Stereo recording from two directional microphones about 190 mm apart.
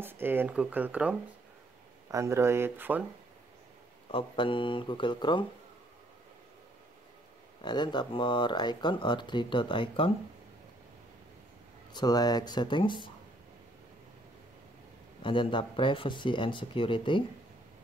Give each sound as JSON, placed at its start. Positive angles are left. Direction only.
{"t": 0.0, "sound": "speech", "side_deg": -10}
{"t": 4.1, "sound": "speech", "side_deg": 25}
{"t": 7.6, "sound": "speech", "side_deg": 25}
{"t": 11.9, "sound": "speech", "side_deg": 20}
{"t": 15.2, "sound": "speech", "side_deg": 25}